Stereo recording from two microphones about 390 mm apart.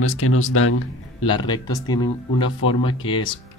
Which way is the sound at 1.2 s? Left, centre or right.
Centre.